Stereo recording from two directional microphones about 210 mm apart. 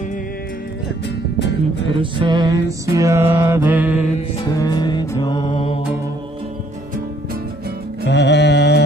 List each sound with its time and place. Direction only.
2.0 s mantra: 20° right (ahead or behind)
4.5 s music: 20° left (ahead or behind)
8.1 s music: 55° left (ahead or behind)